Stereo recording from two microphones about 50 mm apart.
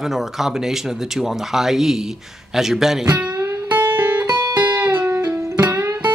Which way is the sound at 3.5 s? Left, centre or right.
Right.